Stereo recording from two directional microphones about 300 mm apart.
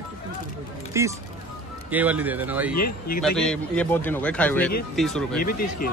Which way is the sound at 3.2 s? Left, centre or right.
Centre.